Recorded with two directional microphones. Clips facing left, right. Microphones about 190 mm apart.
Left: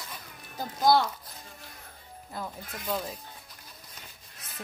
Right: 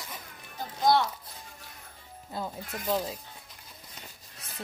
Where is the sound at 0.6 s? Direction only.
35° left (ahead or behind).